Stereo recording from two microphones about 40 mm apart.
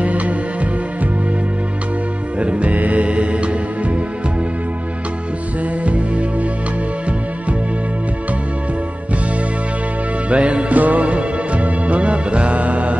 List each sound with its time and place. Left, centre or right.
0.0 s music: right
2.3 s music: right
5.9 s music: right
10.3 s music: right